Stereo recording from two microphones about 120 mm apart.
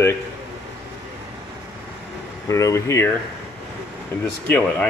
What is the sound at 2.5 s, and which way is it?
Speech, 25° left (ahead or behind).